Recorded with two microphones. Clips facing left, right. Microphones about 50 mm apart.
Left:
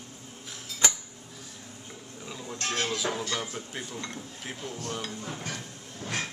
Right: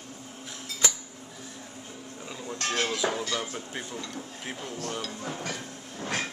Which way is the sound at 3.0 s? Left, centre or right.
Right.